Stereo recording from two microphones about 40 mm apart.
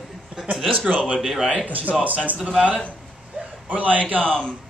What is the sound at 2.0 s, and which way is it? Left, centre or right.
Speech, right.